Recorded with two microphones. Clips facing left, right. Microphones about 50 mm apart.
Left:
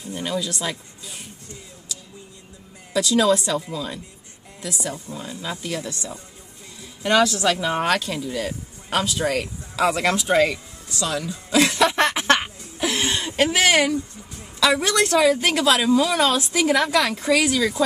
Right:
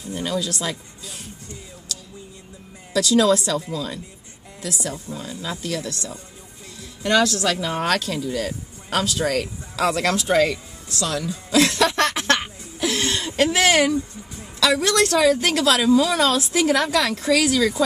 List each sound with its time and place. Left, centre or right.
0.2 s a woman's voice: centre
2.9 s a woman's voice: centre
7.0 s a woman's voice: centre
11.0 s a sound: centre
13.4 s a woman's voice: centre